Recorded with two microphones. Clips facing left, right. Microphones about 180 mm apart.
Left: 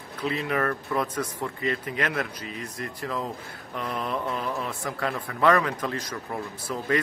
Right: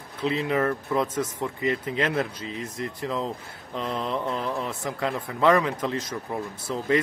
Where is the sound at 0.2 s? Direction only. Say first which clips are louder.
Right 3 dB; 20° right (ahead or behind).